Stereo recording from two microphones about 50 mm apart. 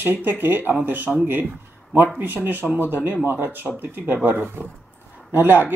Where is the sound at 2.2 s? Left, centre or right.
Right.